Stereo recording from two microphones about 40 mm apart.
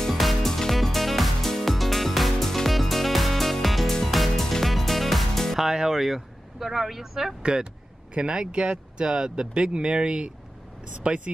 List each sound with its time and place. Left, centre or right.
0.1 s music: centre
0.5 s music: centre
5.6 s vehicle: centre
8.1 s speech: right